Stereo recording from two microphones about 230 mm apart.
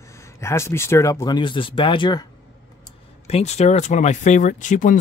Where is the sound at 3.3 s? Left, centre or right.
Left.